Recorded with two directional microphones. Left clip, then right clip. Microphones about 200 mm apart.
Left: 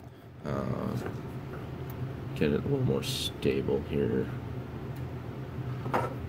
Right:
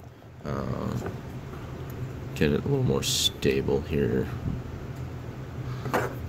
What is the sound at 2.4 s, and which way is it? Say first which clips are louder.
Speech: right 3 dB; 20° right (ahead or behind).